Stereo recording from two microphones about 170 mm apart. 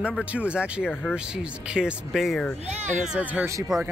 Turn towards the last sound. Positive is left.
turn(degrees=-10)  # may be behind; listen again after turning